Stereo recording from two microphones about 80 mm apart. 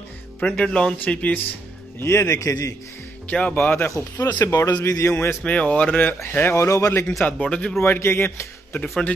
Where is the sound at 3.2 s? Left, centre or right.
Centre.